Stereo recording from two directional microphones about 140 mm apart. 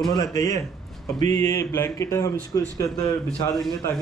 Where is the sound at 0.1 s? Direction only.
25° left (ahead or behind).